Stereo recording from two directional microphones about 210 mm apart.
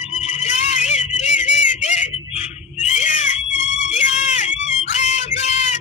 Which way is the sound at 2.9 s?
35° left (ahead or behind).